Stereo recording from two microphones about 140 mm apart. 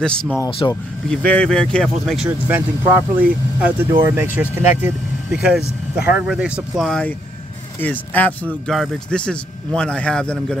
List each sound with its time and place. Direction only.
0.0 s a man's voice: 5° left (ahead or behind)
0.6 s speech: 35° left (ahead or behind)
1.1 s speech: 10° left (ahead or behind)
2.2 s a man's voice: 10° right (ahead or behind); by 8.4 s 10° left (ahead or behind)
8.6 s a man's voice: centre (ahead or behind)